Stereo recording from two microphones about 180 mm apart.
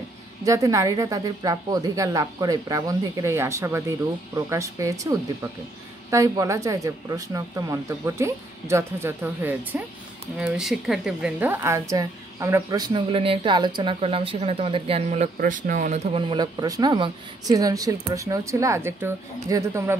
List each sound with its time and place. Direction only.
0.5 s speech: 15° right (ahead or behind)
6.0 s a woman's voice: 15° right (ahead or behind)